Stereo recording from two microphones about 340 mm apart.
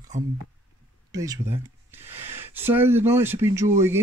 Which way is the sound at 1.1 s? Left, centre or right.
Centre.